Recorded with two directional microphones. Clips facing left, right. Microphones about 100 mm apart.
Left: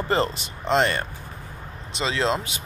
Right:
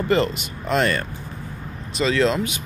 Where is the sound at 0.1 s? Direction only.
30° left (ahead or behind).